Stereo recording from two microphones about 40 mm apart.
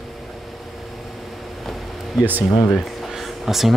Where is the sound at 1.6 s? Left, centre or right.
Centre.